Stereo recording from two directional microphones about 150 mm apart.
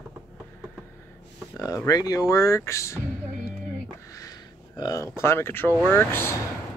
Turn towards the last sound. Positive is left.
turn(degrees=15)  # may be behind; listen again after turning